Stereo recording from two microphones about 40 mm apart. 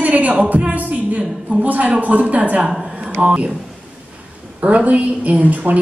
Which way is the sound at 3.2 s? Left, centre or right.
Right.